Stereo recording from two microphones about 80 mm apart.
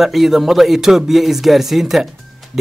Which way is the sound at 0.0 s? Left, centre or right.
Centre.